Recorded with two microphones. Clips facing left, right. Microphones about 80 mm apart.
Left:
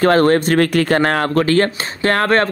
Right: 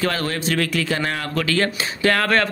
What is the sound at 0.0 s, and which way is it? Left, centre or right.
A man's voice, left.